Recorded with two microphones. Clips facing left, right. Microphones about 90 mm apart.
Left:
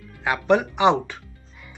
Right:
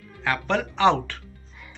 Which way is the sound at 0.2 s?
15° left (ahead or behind).